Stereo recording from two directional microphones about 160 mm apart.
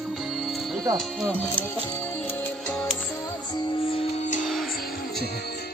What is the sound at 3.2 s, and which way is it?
Music, 25° left (ahead or behind).